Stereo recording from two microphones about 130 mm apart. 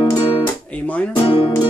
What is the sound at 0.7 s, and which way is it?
Speech, 10° left (ahead or behind).